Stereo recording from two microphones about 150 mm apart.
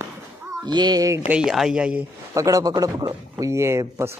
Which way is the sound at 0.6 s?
30° right (ahead or behind).